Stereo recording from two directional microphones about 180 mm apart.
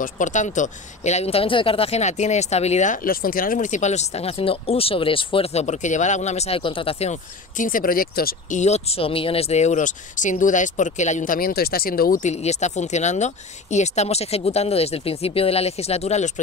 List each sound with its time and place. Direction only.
0.0 s speech: 45° left (ahead or behind)